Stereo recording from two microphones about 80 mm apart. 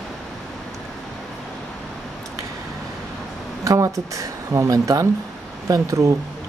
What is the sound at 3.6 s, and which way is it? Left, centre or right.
Speech, right.